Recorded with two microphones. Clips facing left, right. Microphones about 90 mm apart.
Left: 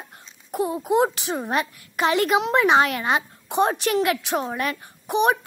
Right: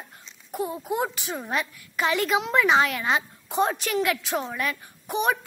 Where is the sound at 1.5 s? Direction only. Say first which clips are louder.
Left 2 dB; 55° left (ahead or behind).